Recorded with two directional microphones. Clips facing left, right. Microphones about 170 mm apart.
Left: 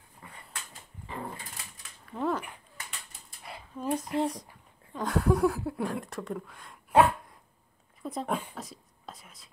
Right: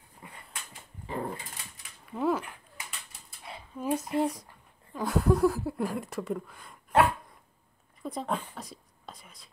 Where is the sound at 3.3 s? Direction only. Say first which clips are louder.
Right 1 dB; centre (ahead or behind).